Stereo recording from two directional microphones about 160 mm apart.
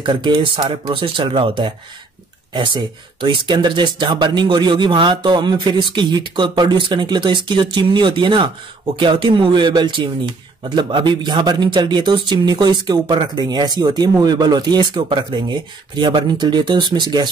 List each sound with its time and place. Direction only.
0.0 s speech: 30° right (ahead or behind)
2.5 s speech: 30° right (ahead or behind)